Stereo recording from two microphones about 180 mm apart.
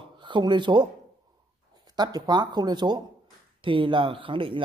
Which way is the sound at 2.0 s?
20° right (ahead or behind).